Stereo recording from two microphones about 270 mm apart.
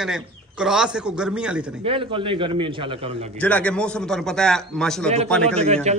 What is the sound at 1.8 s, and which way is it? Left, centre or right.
A man's voice, centre.